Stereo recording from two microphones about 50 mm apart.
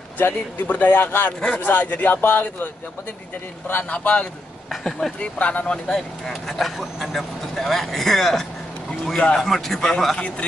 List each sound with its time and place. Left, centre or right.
0.2 s a man's voice: left
4.6 s a man's voice: centre
5.2 s a man's voice: left
5.9 s speech: centre
9.0 s a man's voice: centre
9.4 s a man's voice: centre
10.1 s a man's voice: left